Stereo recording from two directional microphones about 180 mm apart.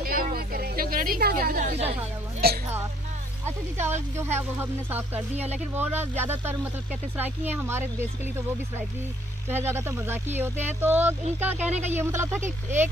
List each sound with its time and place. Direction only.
0.0 s a sound: 55° right (ahead or behind)
2.4 s speech: 60° right (ahead or behind)
4.2 s speech: 15° right (ahead or behind)
5.3 s speech: 35° right (ahead or behind)
5.8 s speech: 10° right (ahead or behind)